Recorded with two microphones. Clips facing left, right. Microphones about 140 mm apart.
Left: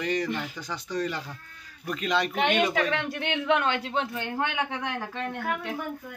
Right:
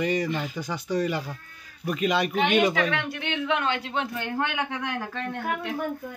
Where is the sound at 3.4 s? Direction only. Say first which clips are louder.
Left 2 dB; 55° left (ahead or behind).